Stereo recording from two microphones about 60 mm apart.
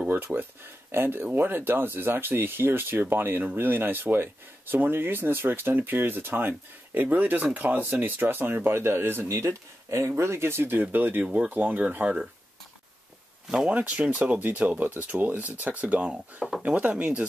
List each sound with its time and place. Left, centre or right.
0.1 s speech: right
9.5 s speech: right
13.5 s speech: centre